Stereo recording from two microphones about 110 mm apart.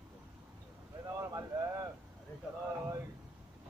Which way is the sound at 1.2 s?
30° right (ahead or behind).